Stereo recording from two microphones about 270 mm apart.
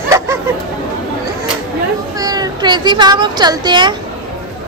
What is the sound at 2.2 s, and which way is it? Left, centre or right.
A child's voice, centre.